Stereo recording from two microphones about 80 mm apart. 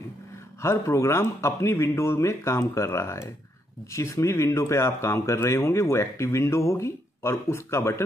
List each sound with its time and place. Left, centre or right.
0.6 s speech: left